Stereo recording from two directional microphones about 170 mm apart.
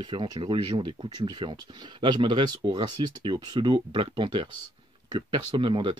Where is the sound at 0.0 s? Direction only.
25° right (ahead or behind).